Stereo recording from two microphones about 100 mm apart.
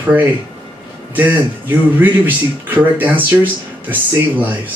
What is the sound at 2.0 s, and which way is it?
A man's voice, 20° right (ahead or behind).